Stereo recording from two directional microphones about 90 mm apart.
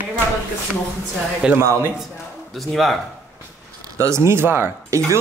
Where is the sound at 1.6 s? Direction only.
35° right (ahead or behind).